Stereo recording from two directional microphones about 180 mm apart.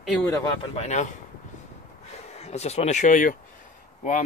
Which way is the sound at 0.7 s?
40° left (ahead or behind).